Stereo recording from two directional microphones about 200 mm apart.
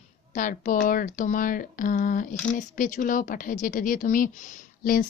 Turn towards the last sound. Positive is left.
turn(degrees=45)  # may be behind; listen again after turning